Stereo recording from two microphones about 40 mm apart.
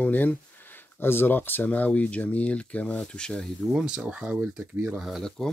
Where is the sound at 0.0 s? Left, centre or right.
Left.